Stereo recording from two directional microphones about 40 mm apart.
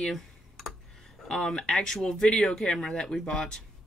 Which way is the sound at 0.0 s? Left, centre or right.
Centre.